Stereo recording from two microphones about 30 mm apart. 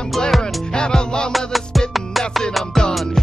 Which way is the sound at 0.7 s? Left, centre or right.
Left.